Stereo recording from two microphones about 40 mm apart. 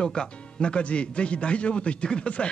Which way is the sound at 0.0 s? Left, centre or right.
Left.